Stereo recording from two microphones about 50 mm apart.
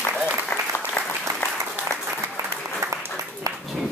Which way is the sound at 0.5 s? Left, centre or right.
Left.